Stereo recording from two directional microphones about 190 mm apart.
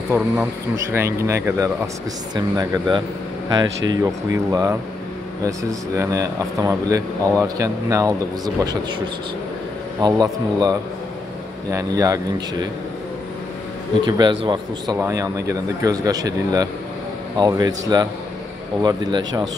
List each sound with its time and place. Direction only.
0.1 s speech: 10° right (ahead or behind)
10.0 s speech: 20° right (ahead or behind)
14.0 s speech: 25° right (ahead or behind)